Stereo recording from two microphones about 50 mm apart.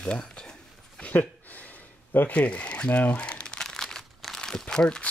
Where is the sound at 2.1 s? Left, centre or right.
Left.